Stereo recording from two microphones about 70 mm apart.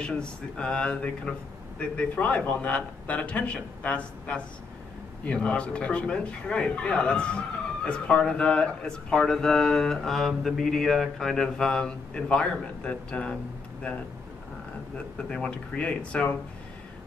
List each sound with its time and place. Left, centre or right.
0.0 s speech: centre
15.2 s speech: centre